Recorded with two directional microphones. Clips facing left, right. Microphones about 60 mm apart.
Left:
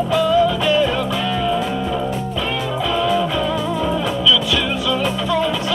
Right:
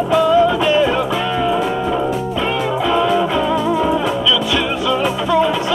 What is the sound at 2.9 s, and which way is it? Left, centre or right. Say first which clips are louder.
Music: right 2 dB; centre.